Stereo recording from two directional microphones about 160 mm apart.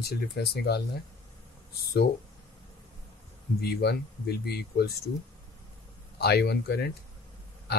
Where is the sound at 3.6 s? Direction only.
85° left.